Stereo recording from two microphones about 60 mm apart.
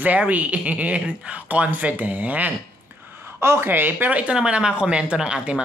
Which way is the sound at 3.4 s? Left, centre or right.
Right.